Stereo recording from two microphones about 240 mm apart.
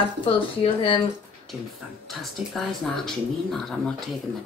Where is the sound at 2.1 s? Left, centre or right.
Centre.